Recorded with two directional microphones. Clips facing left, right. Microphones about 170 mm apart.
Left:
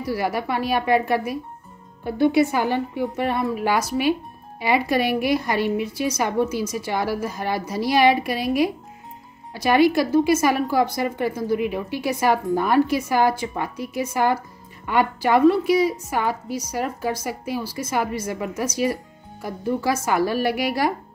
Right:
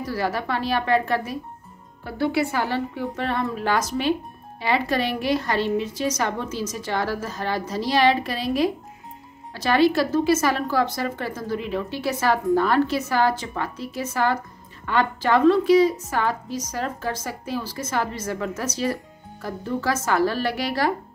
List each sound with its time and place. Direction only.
0.0 s a woman's voice: 10° left (ahead or behind)